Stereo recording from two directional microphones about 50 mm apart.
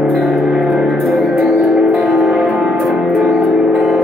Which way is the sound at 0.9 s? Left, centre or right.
Centre.